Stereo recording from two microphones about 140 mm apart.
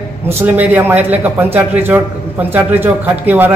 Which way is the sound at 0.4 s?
15° right (ahead or behind).